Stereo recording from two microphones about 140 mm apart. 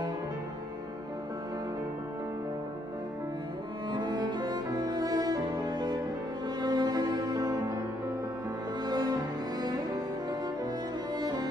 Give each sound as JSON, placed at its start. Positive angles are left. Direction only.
{"t": 3.9, "sound": "cello", "side_deg": -30}
{"t": 6.6, "sound": "music", "side_deg": -30}
{"t": 8.8, "sound": "cello", "side_deg": -30}
{"t": 11.1, "sound": "music", "side_deg": -30}